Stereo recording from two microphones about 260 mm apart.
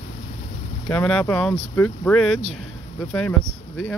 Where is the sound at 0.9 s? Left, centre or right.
Centre.